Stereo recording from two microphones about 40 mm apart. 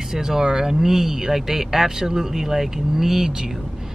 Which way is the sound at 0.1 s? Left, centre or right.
Centre.